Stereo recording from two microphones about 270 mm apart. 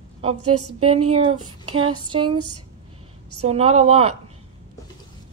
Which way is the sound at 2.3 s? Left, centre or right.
Right.